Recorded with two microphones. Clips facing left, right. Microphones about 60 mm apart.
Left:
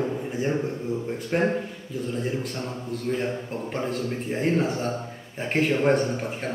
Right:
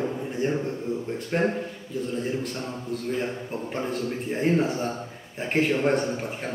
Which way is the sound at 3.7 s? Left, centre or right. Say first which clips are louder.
Left 1 dB; centre.